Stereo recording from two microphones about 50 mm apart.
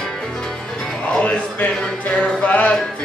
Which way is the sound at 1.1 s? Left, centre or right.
Left.